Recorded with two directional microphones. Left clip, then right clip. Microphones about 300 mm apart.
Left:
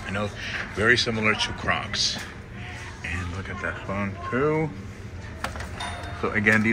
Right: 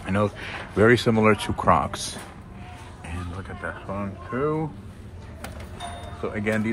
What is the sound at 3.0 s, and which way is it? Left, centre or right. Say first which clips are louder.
Speech: left 5 dB; centre.